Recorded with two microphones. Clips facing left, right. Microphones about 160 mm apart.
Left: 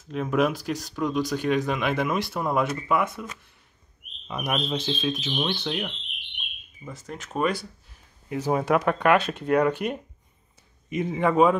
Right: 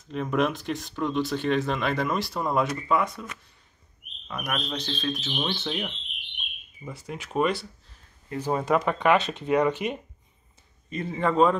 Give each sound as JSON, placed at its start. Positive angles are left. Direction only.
{"t": 0.1, "sound": "speech", "side_deg": 0}
{"t": 4.3, "sound": "speech", "side_deg": 20}
{"t": 4.7, "sound": "speech", "side_deg": 5}
{"t": 7.1, "sound": "speech", "side_deg": -5}
{"t": 8.3, "sound": "speech", "side_deg": 10}
{"t": 10.9, "sound": "speech", "side_deg": 15}